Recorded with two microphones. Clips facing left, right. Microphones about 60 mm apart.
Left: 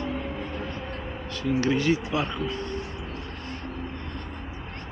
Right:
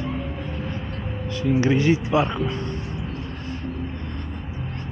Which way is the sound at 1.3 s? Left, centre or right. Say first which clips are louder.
Right 4 dB; centre.